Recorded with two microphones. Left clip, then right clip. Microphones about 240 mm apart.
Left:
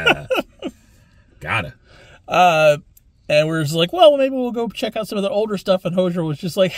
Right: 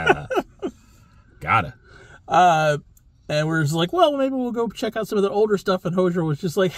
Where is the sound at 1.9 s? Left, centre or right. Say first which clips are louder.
Left 1 dB; centre.